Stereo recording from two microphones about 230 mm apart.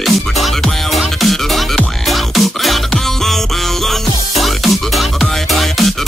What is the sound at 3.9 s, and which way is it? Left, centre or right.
Music, centre.